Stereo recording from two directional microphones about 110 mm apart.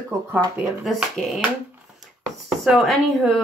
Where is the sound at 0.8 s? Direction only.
Centre (ahead or behind).